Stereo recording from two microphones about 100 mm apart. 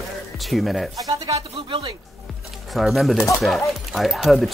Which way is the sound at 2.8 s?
Centre (ahead or behind).